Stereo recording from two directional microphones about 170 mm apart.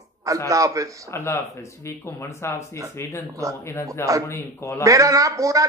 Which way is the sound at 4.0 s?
15° left (ahead or behind).